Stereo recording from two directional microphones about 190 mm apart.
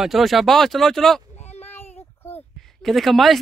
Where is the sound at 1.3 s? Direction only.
35° left (ahead or behind).